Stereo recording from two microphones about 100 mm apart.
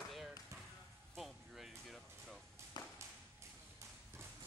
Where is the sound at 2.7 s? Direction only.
45° left (ahead or behind).